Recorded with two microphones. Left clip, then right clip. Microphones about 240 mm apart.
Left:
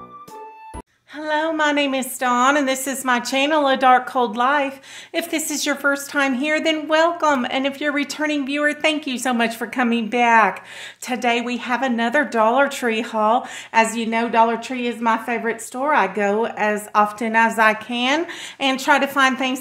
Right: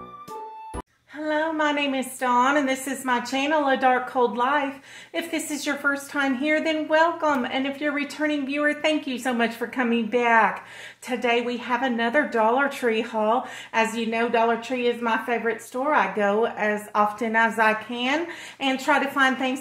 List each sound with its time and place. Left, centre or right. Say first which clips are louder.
1.2 s speech: left 4 dB; left